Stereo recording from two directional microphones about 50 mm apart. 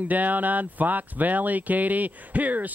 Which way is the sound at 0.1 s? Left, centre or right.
Right.